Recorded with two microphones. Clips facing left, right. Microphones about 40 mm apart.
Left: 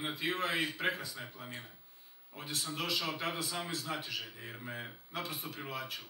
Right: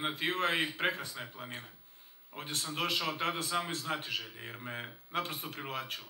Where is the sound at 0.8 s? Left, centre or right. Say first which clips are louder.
Right 1 dB; right.